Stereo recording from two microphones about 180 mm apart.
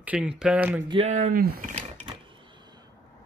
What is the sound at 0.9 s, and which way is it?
Speech, 35° right (ahead or behind).